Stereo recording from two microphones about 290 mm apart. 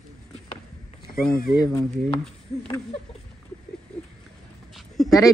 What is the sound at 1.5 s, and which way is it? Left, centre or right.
Speech, centre.